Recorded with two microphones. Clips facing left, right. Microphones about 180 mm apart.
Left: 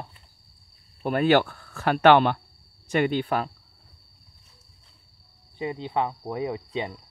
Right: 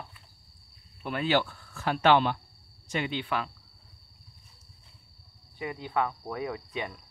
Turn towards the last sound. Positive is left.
turn(degrees=25)  # may be behind; listen again after turning